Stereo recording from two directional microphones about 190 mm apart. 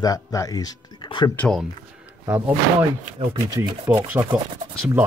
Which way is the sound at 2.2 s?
10° right (ahead or behind).